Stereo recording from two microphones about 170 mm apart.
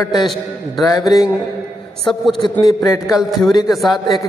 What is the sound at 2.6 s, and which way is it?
Speech, 20° left (ahead or behind).